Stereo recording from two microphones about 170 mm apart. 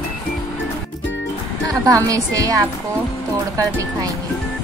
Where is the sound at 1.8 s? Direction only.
20° right (ahead or behind).